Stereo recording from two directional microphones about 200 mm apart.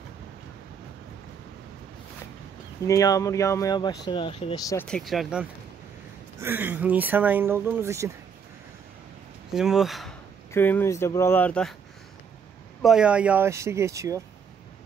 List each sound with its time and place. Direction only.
2.8 s speech: 15° left (ahead or behind)
4.6 s speech: 5° left (ahead or behind); by 8.1 s 15° right (ahead or behind)
9.5 s speech: centre (ahead or behind)
10.5 s speech: 10° left (ahead or behind)
12.8 s speech: 5° right (ahead or behind)